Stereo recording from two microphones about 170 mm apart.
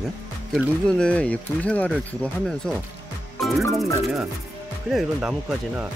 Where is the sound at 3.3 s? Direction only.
Centre (ahead or behind).